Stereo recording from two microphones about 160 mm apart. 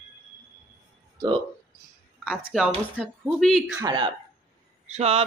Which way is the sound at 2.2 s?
5° right (ahead or behind).